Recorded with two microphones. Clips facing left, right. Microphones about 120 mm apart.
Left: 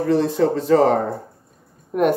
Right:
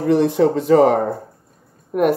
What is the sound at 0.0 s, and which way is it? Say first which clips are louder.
Speech: right 3 dB; 15° right (ahead or behind).